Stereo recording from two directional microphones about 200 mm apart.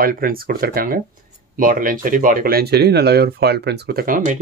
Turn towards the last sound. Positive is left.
turn(degrees=-45)  # may be behind; listen again after turning